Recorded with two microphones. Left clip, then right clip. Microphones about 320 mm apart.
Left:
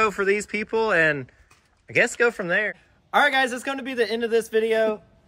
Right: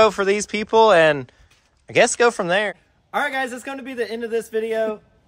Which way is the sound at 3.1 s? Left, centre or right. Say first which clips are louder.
Left 3 dB; centre.